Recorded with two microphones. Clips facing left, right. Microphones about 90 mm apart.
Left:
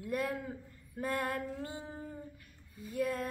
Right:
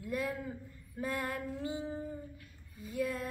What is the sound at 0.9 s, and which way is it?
Speech, 50° left (ahead or behind).